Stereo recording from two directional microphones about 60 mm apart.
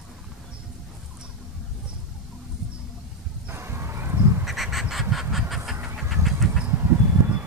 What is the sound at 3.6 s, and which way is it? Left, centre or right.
Duck, right.